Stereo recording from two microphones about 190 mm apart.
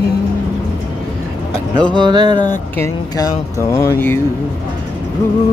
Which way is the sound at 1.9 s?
25° right (ahead or behind).